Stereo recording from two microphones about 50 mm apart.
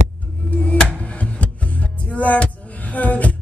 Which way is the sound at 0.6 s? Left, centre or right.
Left.